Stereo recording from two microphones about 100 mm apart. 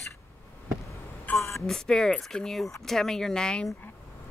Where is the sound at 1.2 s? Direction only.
25° left (ahead or behind).